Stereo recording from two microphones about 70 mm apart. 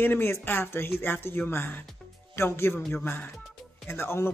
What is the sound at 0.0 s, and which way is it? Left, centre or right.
Speech, left.